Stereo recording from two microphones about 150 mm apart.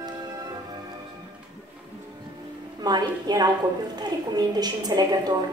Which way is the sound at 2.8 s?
25° right (ahead or behind).